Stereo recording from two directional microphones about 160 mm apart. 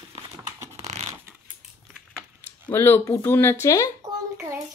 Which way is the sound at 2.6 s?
15° left (ahead or behind).